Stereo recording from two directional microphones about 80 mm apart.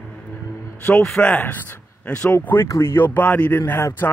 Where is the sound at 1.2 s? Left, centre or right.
Left.